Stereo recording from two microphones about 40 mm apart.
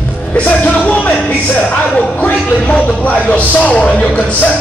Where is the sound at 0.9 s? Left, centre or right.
Left.